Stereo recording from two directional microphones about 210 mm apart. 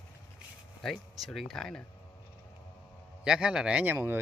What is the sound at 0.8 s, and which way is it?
Speech, centre (ahead or behind).